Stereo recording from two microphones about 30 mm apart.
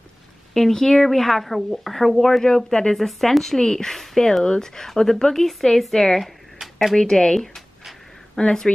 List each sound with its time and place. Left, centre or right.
0.6 s speech: centre
2.4 s speech: left
3.0 s speech: centre
3.5 s speech: left
3.9 s speech: centre
6.2 s a sound: centre
7.0 s speech: left
8.4 s speech: left